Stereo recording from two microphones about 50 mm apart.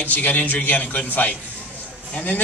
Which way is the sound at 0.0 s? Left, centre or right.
Left.